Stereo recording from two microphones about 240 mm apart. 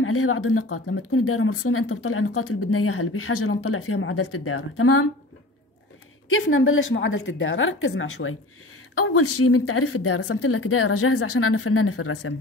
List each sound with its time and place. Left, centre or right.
0.0 s speech: left
6.4 s speech: left
8.9 s speech: left